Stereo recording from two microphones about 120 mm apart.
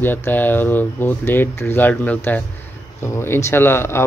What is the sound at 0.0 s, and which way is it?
Speech, 15° left (ahead or behind).